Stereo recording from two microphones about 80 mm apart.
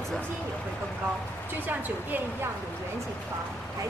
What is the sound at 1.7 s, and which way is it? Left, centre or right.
Speech, right.